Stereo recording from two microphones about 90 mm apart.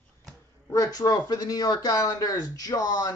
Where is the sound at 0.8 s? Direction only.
45° left (ahead or behind).